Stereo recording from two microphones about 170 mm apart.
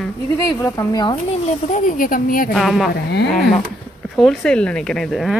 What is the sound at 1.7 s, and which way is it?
Speech, 50° left (ahead or behind).